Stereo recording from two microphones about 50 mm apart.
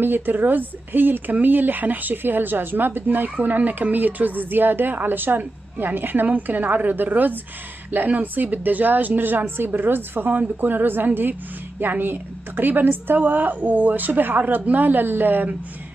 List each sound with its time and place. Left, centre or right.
0.0 s a woman's voice: right